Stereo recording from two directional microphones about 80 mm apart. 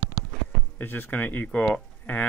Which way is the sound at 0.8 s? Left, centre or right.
Left.